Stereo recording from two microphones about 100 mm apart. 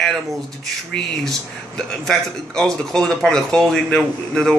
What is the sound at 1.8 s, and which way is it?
Speech, 10° left (ahead or behind).